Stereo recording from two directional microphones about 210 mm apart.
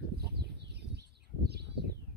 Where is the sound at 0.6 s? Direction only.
50° right (ahead or behind).